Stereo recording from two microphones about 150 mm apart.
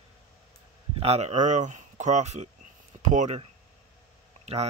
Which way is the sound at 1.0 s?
45° right (ahead or behind).